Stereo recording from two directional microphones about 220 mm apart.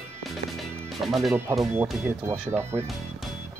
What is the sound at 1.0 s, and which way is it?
Speech, centre (ahead or behind).